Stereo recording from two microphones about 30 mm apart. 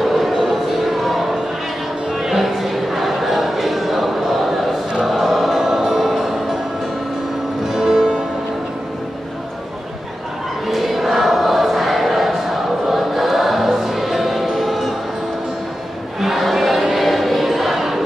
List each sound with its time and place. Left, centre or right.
0.0 s a sound: centre
0.7 s music: centre
2.1 s a sound: centre
5.0 s choir: centre
5.6 s music: centre
5.9 s music: centre
7.6 s music: centre
10.7 s choir: centre
14.4 s music: centre
16.2 s choir: centre